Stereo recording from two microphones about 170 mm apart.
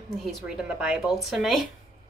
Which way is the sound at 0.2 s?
Centre (ahead or behind).